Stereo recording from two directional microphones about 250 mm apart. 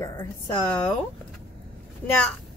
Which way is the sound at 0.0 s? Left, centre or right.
Centre.